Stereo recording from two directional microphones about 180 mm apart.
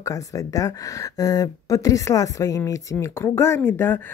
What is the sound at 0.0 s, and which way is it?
Speech, 20° left (ahead or behind).